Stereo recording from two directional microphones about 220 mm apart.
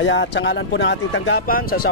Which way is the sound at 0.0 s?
55° left (ahead or behind).